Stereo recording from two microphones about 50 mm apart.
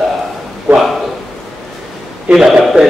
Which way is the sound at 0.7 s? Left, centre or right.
Right.